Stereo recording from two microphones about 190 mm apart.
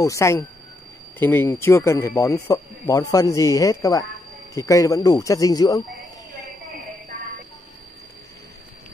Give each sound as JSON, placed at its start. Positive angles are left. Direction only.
{"t": 0.0, "sound": "speech", "side_deg": 15}